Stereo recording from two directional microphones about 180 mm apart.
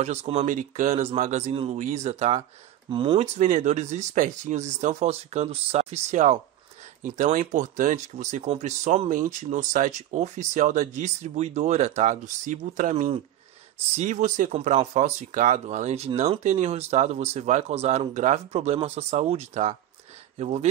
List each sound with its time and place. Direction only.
0.0 s speech: 40° right (ahead or behind)
2.9 s speech: 25° right (ahead or behind)
3.2 s speech: 40° right (ahead or behind)